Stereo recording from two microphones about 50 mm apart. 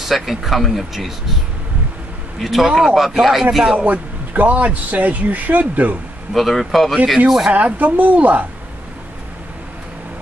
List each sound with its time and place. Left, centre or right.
0.0 s speech: centre
2.4 s speech: centre
3.7 s speech: right
6.3 s speech: centre
7.5 s speech: right